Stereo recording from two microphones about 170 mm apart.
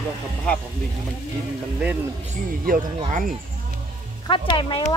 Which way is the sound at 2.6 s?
55° right (ahead or behind).